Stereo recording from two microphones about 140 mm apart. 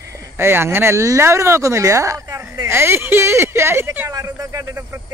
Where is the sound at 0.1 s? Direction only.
15° right (ahead or behind).